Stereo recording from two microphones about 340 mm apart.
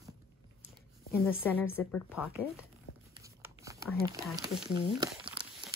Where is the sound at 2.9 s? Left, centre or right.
Left.